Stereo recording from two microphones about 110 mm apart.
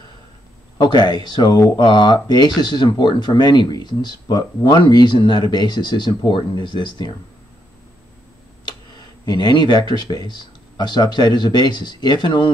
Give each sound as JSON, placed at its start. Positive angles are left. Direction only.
{"t": 0.7, "sound": "speech", "side_deg": 40}
{"t": 8.6, "sound": "speech", "side_deg": 40}